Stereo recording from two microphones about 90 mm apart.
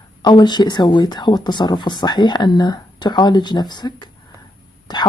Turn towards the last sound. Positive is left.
turn(degrees=50)  # may be behind; listen again after turning